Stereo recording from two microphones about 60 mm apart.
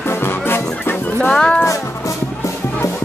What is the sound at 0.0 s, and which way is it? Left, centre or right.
Music, left.